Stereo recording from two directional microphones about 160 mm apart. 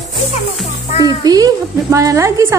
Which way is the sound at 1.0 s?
25° right (ahead or behind).